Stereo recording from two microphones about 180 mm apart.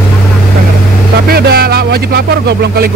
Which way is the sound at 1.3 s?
60° right (ahead or behind).